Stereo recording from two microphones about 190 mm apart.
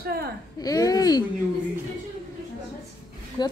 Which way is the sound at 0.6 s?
20° left (ahead or behind).